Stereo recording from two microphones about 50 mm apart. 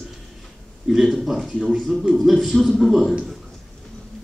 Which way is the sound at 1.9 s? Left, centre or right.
Centre.